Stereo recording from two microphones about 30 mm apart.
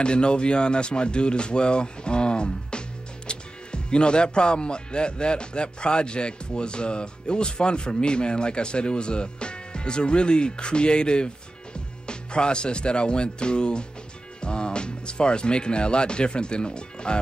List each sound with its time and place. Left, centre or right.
0.0 s speech: left